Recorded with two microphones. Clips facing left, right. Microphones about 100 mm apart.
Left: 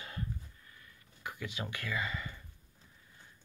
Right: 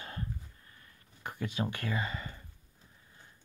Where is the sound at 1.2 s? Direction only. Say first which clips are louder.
Right 5 dB; 40° right (ahead or behind).